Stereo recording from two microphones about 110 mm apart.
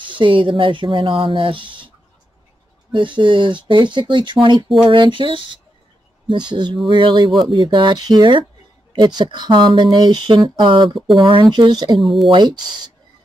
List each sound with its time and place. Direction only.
0.0 s speech: 50° right (ahead or behind)
2.9 s speech: 50° right (ahead or behind)
7.2 s speech: centre (ahead or behind)
7.5 s speech: 45° right (ahead or behind)